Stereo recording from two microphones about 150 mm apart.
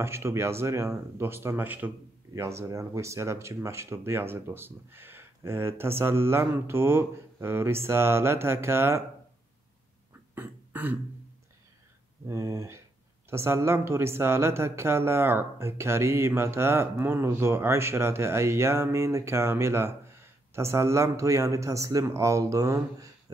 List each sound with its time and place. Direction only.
0.0 s speech: 15° right (ahead or behind)
10.3 s a sound: 10° right (ahead or behind)
12.3 s speech: 20° right (ahead or behind)